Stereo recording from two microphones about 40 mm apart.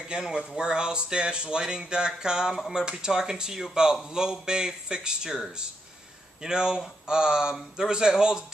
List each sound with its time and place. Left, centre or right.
0.1 s speech: centre
6.4 s speech: centre